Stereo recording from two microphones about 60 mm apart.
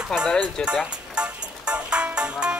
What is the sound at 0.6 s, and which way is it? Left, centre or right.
Speech, centre.